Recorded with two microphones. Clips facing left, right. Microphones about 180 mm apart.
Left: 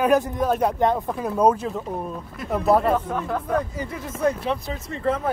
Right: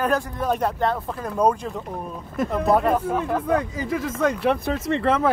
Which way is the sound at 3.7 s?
90° right.